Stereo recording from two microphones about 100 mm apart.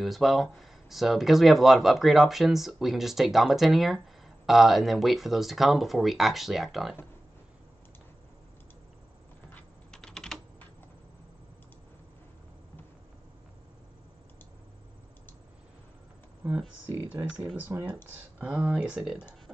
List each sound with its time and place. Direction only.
0.0 s speech: centre (ahead or behind)
9.5 s a sound: 15° left (ahead or behind)
9.9 s typing: 5° left (ahead or behind)
16.4 s speech: 20° right (ahead or behind)